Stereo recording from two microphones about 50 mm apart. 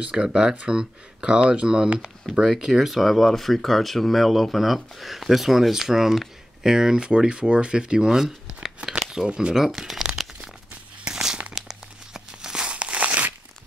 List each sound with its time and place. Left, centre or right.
0.1 s speech: centre
11.1 s crumpling: centre
11.5 s tearing: centre; by 13.3 s right